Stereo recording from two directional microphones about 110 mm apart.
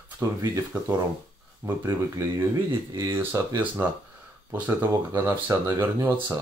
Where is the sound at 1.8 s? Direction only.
30° right (ahead or behind).